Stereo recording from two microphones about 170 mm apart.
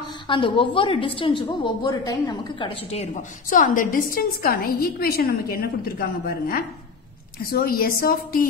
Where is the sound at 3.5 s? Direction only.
50° left (ahead or behind).